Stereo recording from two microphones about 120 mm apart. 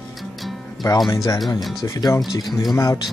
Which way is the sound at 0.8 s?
30° left (ahead or behind).